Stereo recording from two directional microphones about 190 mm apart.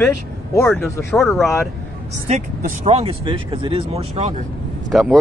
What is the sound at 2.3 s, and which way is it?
Speech, 35° right (ahead or behind).